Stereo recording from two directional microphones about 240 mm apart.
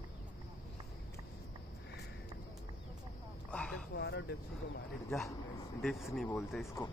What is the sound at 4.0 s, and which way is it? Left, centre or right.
Vehicle, left.